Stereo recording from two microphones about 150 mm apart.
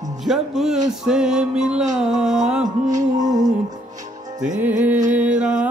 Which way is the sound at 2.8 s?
55° right (ahead or behind).